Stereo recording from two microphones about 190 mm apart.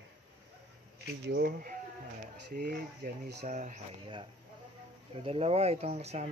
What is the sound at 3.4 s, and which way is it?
Speech, 40° right (ahead or behind).